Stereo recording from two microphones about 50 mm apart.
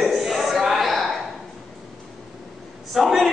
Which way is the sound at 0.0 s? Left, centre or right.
Centre.